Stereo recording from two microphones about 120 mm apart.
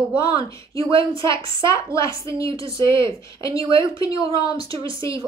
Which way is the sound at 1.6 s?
25° left (ahead or behind).